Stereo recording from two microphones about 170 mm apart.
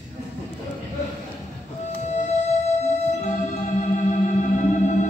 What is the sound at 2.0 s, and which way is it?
Music, 40° left (ahead or behind).